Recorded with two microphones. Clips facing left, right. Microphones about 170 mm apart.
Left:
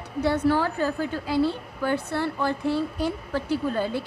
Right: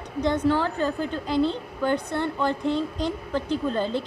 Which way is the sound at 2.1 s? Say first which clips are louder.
Right 1 dB; 20° right (ahead or behind).